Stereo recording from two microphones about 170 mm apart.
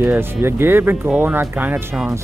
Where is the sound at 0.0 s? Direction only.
15° right (ahead or behind).